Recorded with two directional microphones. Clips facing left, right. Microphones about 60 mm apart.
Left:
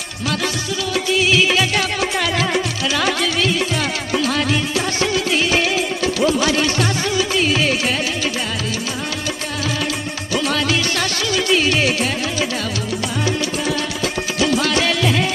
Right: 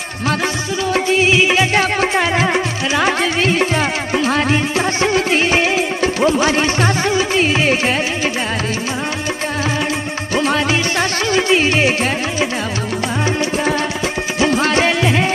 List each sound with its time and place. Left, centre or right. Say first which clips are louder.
0.9 s music: right 3 dB; right
10.3 s music: right 3 dB; right
14.4 s music: right 3 dB; right